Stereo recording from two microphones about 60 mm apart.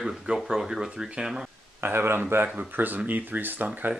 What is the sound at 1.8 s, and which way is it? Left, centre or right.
Speech, right.